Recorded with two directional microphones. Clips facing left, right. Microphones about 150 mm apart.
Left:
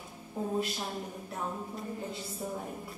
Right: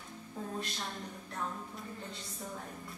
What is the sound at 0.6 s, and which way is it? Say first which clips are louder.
A woman's voice: left 7 dB; 5° left (ahead or behind).